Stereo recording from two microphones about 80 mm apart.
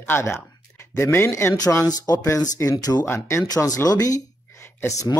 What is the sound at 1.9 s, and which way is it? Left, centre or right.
Speech, left.